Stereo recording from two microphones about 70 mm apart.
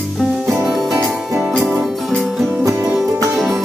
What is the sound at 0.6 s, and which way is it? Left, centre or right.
Music, centre.